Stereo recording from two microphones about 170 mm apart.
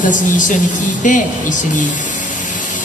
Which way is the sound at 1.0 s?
50° left (ahead or behind).